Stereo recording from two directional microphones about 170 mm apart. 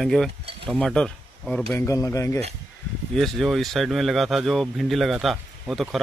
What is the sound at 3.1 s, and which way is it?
Speech, centre (ahead or behind).